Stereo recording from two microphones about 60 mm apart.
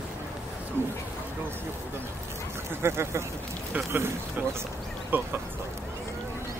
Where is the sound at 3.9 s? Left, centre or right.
Right.